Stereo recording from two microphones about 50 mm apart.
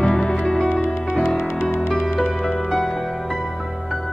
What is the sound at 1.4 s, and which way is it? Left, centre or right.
Music, left.